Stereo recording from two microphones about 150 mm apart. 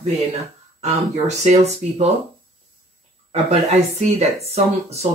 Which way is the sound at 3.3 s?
45° right (ahead or behind).